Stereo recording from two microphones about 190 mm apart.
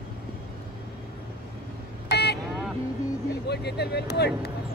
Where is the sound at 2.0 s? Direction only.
60° left (ahead or behind).